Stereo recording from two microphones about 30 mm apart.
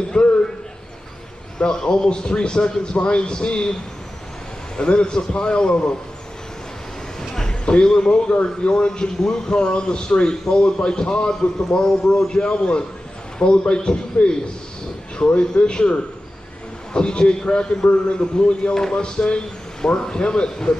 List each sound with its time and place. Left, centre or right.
0.2 s a man's voice: left
1.7 s a man's voice: left
2.0 s a man's voice: left
7.2 s a sound: left
7.6 s a man's voice: left
11.8 s speech: centre
12.3 s a man's voice: left
16.9 s a man's voice: left